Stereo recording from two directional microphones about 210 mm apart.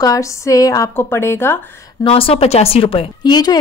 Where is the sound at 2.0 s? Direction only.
25° left (ahead or behind).